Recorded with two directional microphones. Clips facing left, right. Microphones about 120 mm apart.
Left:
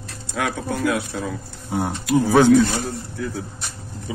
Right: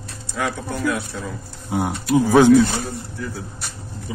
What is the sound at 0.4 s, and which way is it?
Speech, 90° left.